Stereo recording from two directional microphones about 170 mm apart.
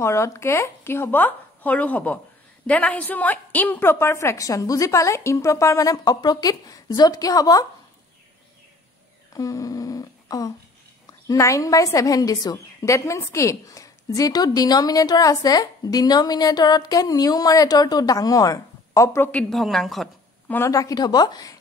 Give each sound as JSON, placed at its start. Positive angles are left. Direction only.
{"t": 0.0, "sound": "a woman's voice", "side_deg": 15}
{"t": 9.3, "sound": "a sound", "side_deg": 20}
{"t": 11.2, "sound": "a woman's voice", "side_deg": 20}
{"t": 19.5, "sound": "a woman's voice", "side_deg": 0}
{"t": 20.5, "sound": "a woman's voice", "side_deg": 20}